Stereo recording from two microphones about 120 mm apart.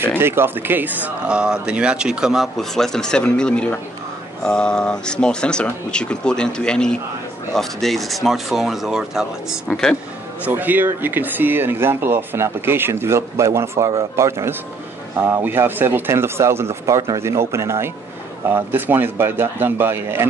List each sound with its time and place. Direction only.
0.2 s speech: 20° right (ahead or behind)
9.7 s speech: 5° left (ahead or behind)
10.4 s speech: 15° right (ahead or behind)